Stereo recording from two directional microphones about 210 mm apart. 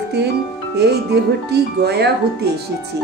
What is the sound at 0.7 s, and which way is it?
Speech, 50° right (ahead or behind).